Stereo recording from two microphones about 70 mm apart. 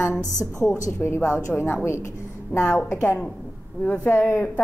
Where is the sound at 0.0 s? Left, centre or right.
Left.